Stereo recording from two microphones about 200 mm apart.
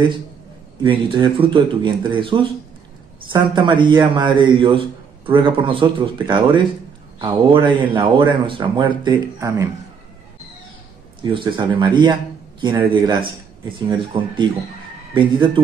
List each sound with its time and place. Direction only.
0.8 s a man's voice: 25° right (ahead or behind)
11.3 s a man's voice: 25° right (ahead or behind)